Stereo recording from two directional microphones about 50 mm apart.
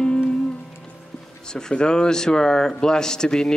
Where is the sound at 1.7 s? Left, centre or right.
Centre.